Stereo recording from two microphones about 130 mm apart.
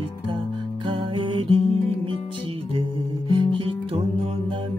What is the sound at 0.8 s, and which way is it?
Music, 40° right (ahead or behind).